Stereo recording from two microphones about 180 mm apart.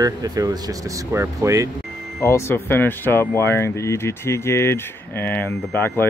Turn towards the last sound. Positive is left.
turn(degrees=10)  # may be behind; listen again after turning